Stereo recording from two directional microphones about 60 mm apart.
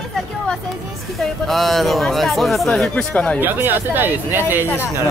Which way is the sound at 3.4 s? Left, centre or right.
Right.